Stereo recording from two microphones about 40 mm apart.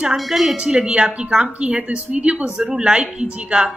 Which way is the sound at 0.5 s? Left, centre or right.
Centre.